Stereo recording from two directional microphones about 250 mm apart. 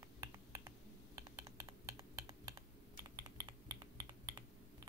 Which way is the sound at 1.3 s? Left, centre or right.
Centre.